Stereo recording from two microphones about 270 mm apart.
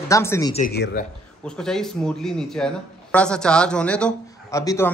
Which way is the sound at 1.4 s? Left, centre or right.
Centre.